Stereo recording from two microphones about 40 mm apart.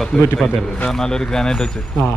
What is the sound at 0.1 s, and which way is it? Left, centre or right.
A man's voice, centre.